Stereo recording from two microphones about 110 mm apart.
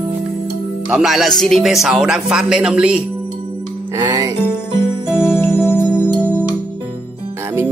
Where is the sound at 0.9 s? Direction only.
5° right (ahead or behind).